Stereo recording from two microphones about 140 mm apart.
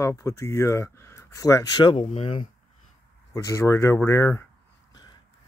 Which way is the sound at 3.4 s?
20° left (ahead or behind).